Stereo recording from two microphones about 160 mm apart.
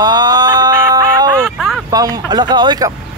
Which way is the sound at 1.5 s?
Centre (ahead or behind).